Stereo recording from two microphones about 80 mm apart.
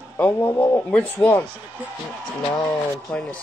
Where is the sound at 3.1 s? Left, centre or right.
Centre.